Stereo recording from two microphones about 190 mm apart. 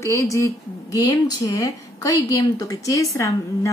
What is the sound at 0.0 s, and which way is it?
Speech, 15° left (ahead or behind).